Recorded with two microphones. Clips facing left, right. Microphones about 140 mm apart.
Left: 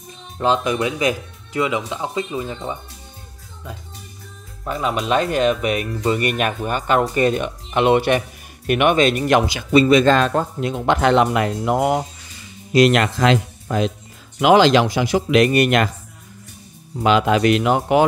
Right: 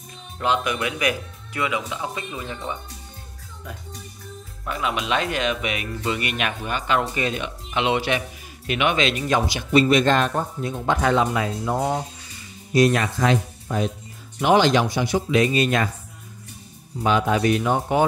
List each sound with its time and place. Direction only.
0.4 s speech: 30° left (ahead or behind)
4.6 s speech: 35° left (ahead or behind)
10.3 s speech: 90° left; by 15.9 s 70° left (ahead or behind)
17.0 s speech: 90° left